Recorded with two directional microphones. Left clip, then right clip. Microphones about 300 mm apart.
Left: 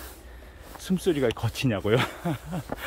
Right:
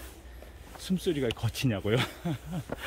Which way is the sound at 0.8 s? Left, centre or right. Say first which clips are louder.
Left 5 dB; centre.